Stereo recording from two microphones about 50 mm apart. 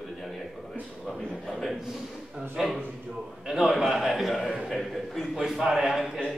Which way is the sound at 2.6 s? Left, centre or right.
Centre.